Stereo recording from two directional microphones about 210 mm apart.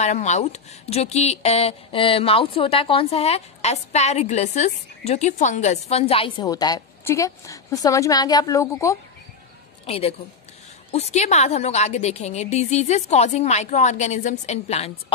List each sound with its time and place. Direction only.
0.0 s speech: 35° left (ahead or behind); by 8.9 s 15° left (ahead or behind)
9.8 s a woman's voice: 30° left (ahead or behind)